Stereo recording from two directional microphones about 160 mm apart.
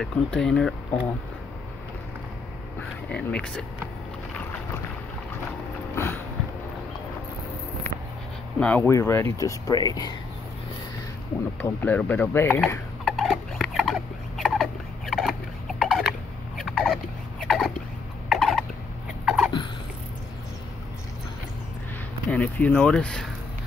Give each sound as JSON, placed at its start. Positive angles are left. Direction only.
{"t": 0.0, "sound": "speech", "side_deg": 5}
{"t": 3.1, "sound": "speech", "side_deg": 5}
{"t": 5.9, "sound": "a sound", "side_deg": 15}
{"t": 8.5, "sound": "speech", "side_deg": 10}
{"t": 11.6, "sound": "speech", "side_deg": 10}
{"t": 13.0, "sound": "rodents", "side_deg": 0}
{"t": 15.8, "sound": "turkey", "side_deg": 0}
{"t": 19.2, "sound": "a sound", "side_deg": -5}
{"t": 22.3, "sound": "speech", "side_deg": 10}